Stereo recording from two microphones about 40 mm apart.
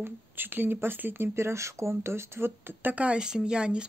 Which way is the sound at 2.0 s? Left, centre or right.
Right.